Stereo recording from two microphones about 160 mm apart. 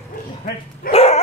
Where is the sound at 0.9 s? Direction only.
40° left (ahead or behind).